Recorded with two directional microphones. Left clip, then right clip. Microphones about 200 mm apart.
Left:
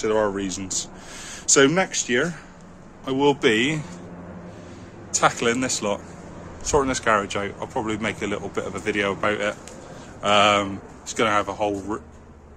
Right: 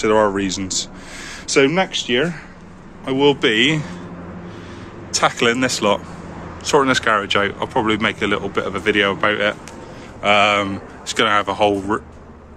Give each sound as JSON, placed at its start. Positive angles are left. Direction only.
{"t": 0.0, "sound": "speech", "side_deg": 0}
{"t": 1.5, "sound": "a man's voice", "side_deg": 20}
{"t": 5.1, "sound": "speech", "side_deg": 0}